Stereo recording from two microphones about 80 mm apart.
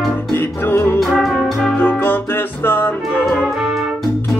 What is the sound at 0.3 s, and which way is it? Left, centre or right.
Music, left.